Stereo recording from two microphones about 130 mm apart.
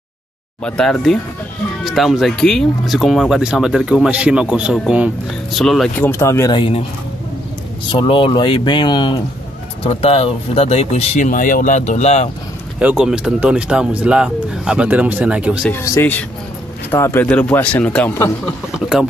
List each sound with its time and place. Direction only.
0.7 s speech: 5° left (ahead or behind)
5.9 s speech: 20° left (ahead or behind)
6.5 s speech: 40° left (ahead or behind)
7.9 s speech: 40° left (ahead or behind)
9.8 s speech: 45° left (ahead or behind)
11.2 s speech: 90° left; by 12.3 s 60° left (ahead or behind)
12.7 s speech: 10° right (ahead or behind)
15.7 s a man's voice: 20° left (ahead or behind)